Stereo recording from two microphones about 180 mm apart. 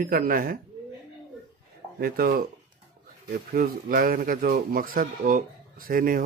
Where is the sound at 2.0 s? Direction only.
55° right (ahead or behind).